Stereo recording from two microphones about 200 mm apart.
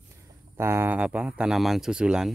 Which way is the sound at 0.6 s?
10° right (ahead or behind).